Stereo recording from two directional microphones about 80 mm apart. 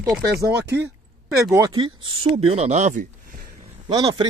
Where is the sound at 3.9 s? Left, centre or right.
Right.